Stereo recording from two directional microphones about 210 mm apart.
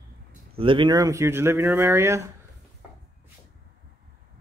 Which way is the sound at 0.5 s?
25° right (ahead or behind).